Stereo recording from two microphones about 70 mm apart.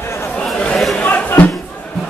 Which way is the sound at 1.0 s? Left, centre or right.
Left.